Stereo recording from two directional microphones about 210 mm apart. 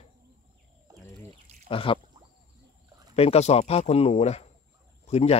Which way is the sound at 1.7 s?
25° left (ahead or behind).